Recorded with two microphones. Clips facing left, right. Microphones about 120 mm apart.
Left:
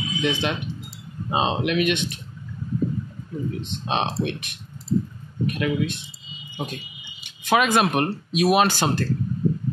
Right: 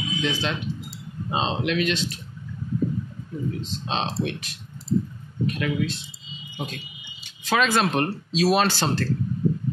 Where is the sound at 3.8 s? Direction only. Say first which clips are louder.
Left 3 dB; 15° left (ahead or behind).